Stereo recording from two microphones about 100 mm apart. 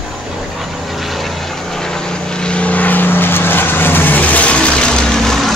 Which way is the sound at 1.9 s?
10° left (ahead or behind).